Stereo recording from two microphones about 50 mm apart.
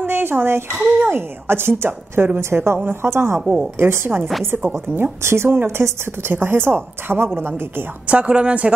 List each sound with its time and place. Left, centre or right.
0.0 s a sound: right
1.0 s a woman's voice: right
4.2 s a woman's voice: centre
4.5 s a woman's voice: right
5.2 s a woman's voice: right
5.6 s a woman's voice: right
8.1 s a woman's voice: right